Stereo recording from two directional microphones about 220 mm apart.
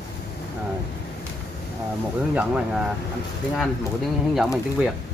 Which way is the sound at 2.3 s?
5° right (ahead or behind).